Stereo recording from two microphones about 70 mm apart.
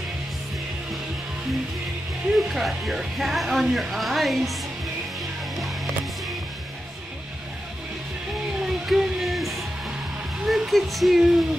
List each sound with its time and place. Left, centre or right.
2.3 s speech: centre
8.6 s music: centre
10.4 s speech: centre